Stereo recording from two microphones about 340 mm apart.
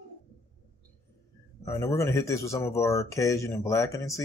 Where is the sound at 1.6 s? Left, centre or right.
Centre.